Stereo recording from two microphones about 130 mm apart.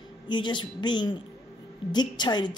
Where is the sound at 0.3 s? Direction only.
35° left (ahead or behind).